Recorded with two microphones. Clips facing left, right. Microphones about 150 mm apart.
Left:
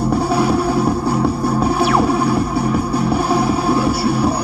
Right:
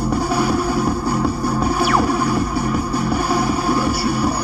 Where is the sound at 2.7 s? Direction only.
25° left (ahead or behind).